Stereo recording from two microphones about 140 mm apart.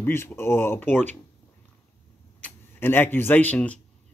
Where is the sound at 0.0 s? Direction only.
15° left (ahead or behind).